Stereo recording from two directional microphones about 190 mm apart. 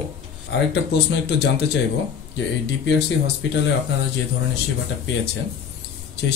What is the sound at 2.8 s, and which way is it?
Speech, 60° left (ahead or behind).